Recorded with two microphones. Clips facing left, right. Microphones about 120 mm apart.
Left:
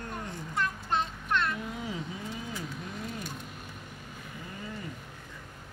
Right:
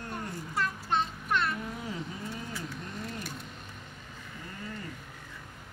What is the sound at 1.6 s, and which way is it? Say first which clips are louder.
Vehicle: left 1 dB; 5° left (ahead or behind).